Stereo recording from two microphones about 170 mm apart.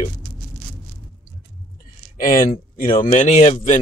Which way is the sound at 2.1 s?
55° left (ahead or behind).